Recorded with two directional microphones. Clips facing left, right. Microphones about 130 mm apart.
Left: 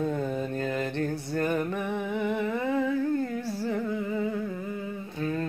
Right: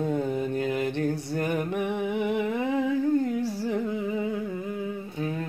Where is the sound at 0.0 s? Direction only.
15° right (ahead or behind).